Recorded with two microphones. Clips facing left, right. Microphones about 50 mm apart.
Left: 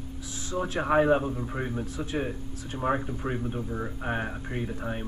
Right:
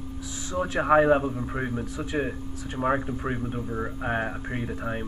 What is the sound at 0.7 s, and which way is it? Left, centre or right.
Speech, centre.